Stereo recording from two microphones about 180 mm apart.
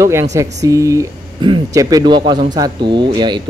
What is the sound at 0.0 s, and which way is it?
A man's voice, 15° right (ahead or behind).